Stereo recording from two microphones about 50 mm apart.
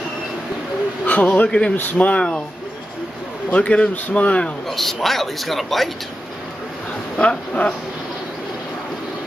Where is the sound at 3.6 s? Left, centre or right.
Left.